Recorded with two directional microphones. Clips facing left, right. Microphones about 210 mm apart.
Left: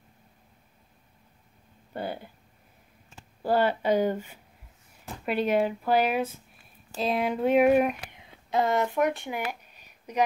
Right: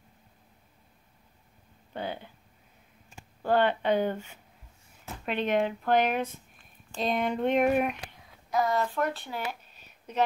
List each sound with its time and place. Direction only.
2.0 s a sound: 10° left (ahead or behind)
3.4 s speech: 10° left (ahead or behind)
8.1 s speech: 25° left (ahead or behind)